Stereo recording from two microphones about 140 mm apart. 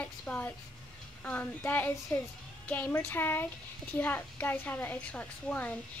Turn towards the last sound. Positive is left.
turn(degrees=10)  # may be behind; listen again after turning